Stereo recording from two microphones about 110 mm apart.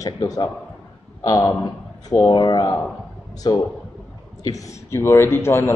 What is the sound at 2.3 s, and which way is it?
A man's voice, 40° left (ahead or behind).